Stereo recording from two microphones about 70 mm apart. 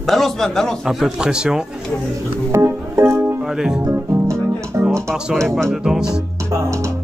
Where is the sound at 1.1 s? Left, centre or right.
Centre.